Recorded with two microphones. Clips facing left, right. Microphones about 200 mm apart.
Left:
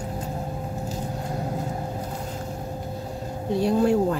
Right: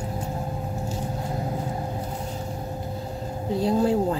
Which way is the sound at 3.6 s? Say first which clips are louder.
Left 1 dB; 65° left (ahead or behind).